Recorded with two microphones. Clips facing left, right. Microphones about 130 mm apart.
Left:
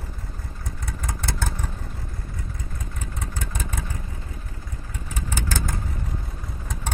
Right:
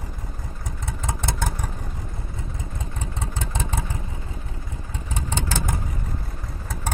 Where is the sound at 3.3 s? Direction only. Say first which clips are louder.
Right 4 dB; 25° right (ahead or behind).